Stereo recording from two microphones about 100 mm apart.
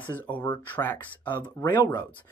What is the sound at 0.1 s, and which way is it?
Speech, 20° left (ahead or behind).